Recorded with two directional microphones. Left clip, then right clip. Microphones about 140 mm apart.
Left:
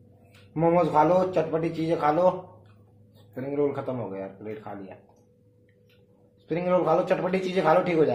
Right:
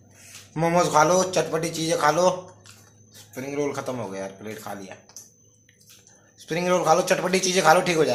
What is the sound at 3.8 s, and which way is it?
A man's voice, 25° right (ahead or behind).